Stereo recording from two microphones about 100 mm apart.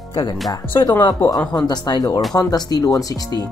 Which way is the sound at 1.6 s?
40° left (ahead or behind).